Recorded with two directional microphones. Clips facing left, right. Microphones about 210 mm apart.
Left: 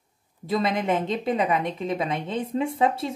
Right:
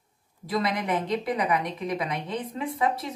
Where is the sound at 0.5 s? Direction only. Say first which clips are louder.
Left 3 dB; 25° left (ahead or behind).